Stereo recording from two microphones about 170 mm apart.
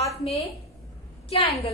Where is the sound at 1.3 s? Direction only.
35° left (ahead or behind).